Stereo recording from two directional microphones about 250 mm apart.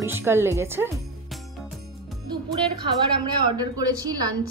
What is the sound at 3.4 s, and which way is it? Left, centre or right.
Speech, centre.